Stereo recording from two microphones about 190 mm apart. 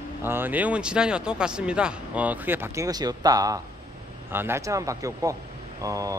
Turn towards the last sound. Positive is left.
turn(degrees=-15)  # may be behind; listen again after turning